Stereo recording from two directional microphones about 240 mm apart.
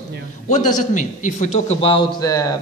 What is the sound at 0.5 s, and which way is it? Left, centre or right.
A man's voice, left.